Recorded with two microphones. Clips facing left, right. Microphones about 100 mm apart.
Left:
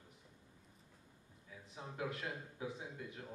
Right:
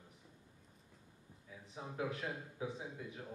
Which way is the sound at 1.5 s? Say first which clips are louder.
Right 2 dB; 5° right (ahead or behind).